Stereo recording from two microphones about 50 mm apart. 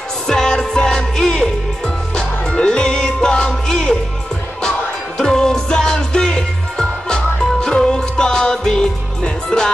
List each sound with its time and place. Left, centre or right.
0.3 s music: centre